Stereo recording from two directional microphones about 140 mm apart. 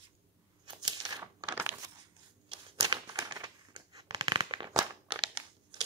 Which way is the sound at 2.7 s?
30° right (ahead or behind).